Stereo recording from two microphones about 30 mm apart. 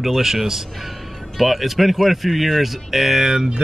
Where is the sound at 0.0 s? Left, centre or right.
Centre.